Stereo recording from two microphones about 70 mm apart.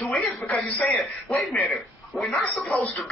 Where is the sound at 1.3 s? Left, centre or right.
Centre.